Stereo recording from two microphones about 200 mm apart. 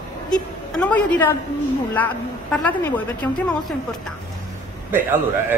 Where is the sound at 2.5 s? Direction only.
5° left (ahead or behind).